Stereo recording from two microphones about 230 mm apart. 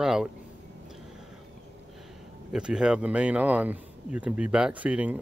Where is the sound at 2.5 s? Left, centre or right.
Centre.